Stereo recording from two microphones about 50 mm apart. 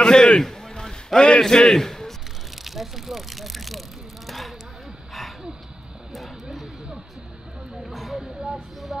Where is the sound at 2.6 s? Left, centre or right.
Centre.